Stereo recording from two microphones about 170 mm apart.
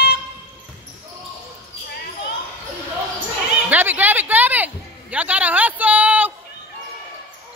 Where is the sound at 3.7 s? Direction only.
10° right (ahead or behind).